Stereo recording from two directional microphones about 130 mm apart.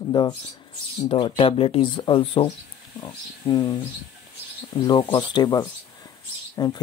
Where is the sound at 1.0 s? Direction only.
45° left (ahead or behind).